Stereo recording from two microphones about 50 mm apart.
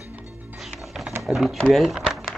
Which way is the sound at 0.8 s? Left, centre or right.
Centre.